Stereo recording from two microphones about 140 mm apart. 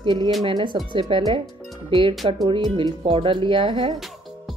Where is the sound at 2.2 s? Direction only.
40° right (ahead or behind).